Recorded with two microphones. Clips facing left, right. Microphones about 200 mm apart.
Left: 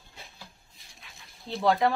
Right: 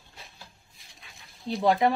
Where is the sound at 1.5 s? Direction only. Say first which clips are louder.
Right 2 dB; 20° right (ahead or behind).